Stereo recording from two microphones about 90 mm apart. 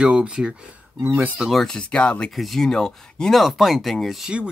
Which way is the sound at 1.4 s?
Centre (ahead or behind).